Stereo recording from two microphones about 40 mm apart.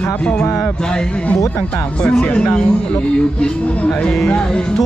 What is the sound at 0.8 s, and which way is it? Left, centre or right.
Speech, left.